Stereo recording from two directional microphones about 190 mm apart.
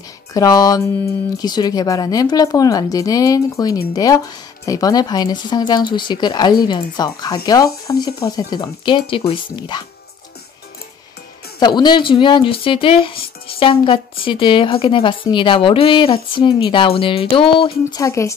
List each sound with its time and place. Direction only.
0.3 s speech: 20° left (ahead or behind)
11.6 s speech: 25° left (ahead or behind)
18.0 s speech: 15° left (ahead or behind)